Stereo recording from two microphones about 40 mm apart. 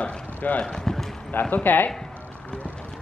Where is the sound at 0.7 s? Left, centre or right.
Centre.